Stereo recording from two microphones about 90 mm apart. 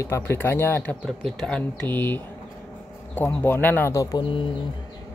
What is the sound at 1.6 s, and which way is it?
Speech, 20° left (ahead or behind).